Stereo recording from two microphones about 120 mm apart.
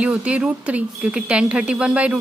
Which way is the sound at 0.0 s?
10° right (ahead or behind).